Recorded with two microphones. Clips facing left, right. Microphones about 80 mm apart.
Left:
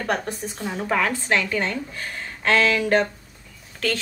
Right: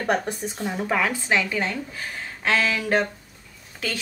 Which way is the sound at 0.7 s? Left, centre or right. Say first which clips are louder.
Left 1 dB; centre.